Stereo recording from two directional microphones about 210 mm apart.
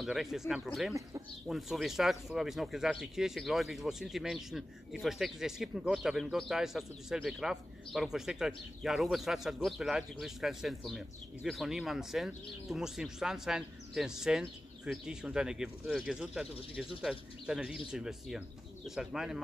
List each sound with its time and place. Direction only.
0.0 s speech: centre (ahead or behind)